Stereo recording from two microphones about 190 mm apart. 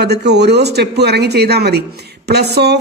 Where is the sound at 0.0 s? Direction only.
60° right (ahead or behind).